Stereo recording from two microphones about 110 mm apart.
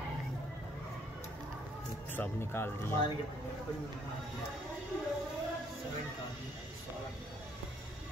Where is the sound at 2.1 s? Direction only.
20° left (ahead or behind).